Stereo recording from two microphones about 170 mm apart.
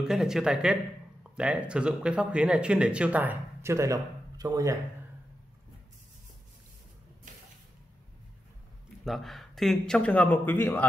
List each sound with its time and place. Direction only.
0.0 s speech: 5° right (ahead or behind); by 4.7 s 20° right (ahead or behind)
7.3 s a sound: 50° right (ahead or behind)
9.0 s speech: centre (ahead or behind)